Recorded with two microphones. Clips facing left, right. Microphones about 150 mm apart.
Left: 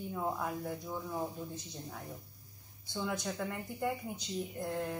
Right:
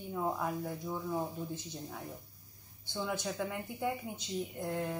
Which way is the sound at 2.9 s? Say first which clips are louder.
Even; centre (ahead or behind).